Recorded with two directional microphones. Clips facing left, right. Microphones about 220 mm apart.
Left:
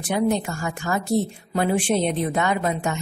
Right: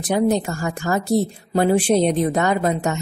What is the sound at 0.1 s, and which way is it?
A woman's voice, 40° right (ahead or behind).